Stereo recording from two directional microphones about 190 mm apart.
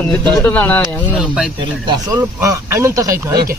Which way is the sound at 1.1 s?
5° right (ahead or behind).